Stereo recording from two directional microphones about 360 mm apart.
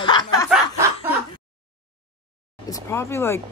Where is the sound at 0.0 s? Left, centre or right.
Centre.